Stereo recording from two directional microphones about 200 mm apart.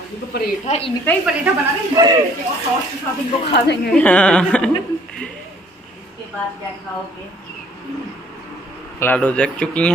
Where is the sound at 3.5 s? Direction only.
55° left (ahead or behind).